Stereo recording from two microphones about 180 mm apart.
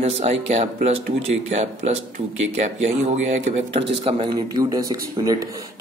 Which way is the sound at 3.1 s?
35° right (ahead or behind).